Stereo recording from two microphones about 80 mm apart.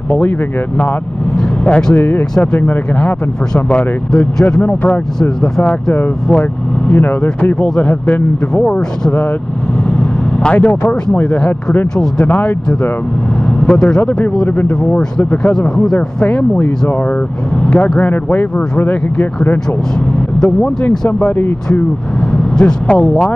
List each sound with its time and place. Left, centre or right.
1.6 s speech: centre
6.9 s speech: left
9.8 s vehicle: centre
11.1 s speech: centre
13.6 s speech: centre
20.3 s speech: centre
21.2 s speech: left
22.3 s speech: centre